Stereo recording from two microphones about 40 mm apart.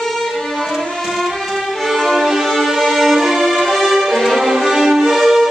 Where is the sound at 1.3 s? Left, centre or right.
Centre.